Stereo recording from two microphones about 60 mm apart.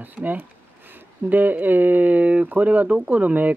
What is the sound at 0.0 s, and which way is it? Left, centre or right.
Speech, right.